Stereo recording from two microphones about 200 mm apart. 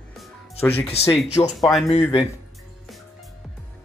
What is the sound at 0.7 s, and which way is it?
Speech, 30° left (ahead or behind).